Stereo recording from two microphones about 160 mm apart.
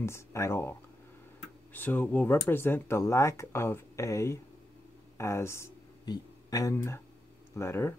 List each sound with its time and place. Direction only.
0.0 s speech: 15° left (ahead or behind)